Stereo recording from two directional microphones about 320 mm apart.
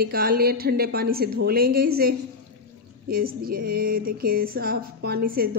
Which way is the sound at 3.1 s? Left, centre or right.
Right.